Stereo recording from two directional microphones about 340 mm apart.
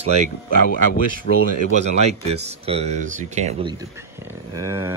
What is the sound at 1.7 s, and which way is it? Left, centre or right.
Speech, centre.